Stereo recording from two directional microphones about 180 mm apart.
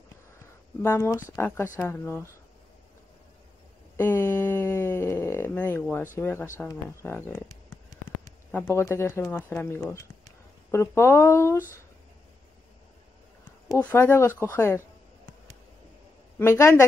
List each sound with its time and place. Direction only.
0.4 s speech: 15° left (ahead or behind)
3.9 s a sound: 10° left (ahead or behind)
6.1 s speech: 15° left (ahead or behind)
13.7 s speech: 15° left (ahead or behind)
16.3 s speech: 15° left (ahead or behind)